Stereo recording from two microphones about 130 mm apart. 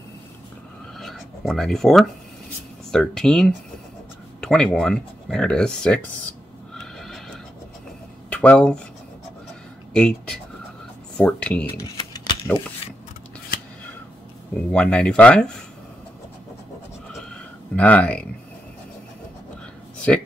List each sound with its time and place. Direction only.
0.9 s writing: centre (ahead or behind)
2.9 s speech: 5° left (ahead or behind)
6.7 s neigh: centre (ahead or behind)
8.3 s speech: 10° left (ahead or behind)
9.9 s speech: 5° left (ahead or behind)
12.0 s a sound: 35° left (ahead or behind)
14.7 s speech: 5° left (ahead or behind)
17.7 s speech: 10° left (ahead or behind)
20.1 s speech: 5° left (ahead or behind)